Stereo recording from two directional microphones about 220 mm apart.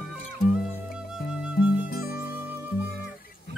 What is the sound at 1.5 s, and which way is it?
Music, 45° left (ahead or behind).